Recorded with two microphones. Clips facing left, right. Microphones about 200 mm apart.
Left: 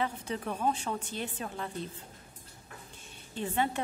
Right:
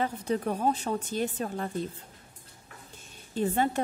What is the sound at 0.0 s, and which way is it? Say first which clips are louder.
A woman's voice: right 5 dB; 40° right (ahead or behind).